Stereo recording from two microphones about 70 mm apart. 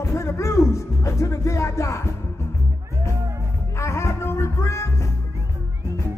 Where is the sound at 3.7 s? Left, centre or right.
Left.